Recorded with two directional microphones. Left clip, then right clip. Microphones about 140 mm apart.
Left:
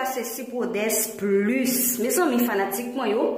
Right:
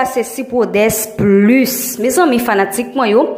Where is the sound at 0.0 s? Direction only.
30° right (ahead or behind).